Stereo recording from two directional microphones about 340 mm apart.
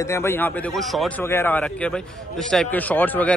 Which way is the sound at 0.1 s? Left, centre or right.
Centre.